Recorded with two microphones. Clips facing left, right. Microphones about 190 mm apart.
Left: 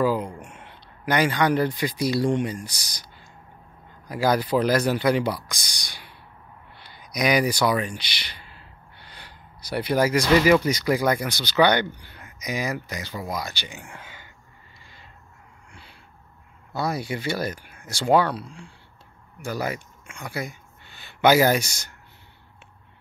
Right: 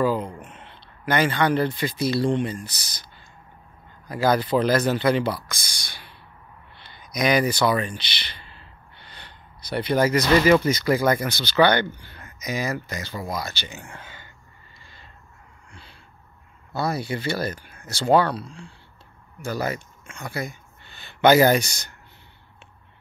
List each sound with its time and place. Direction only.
0.0 s speech: 10° left (ahead or behind)
14.8 s a sound: 10° left (ahead or behind)
16.7 s speech: 10° left (ahead or behind)